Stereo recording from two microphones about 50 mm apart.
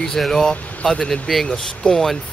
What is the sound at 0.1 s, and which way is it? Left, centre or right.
Speech, centre.